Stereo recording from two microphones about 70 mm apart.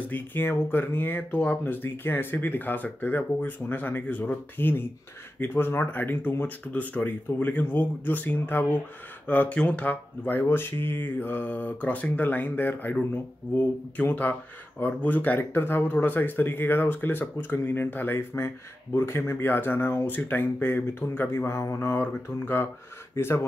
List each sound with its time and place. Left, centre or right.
0.1 s speech: left